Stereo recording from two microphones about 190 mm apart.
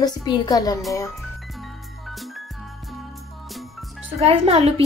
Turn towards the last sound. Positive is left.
turn(degrees=-30)  # may be behind; listen again after turning